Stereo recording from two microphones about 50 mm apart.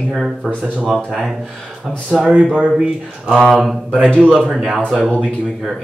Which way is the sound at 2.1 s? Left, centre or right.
Centre.